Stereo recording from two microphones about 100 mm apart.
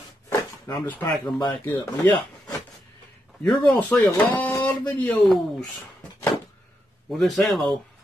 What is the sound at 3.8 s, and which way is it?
Speech, 15° left (ahead or behind).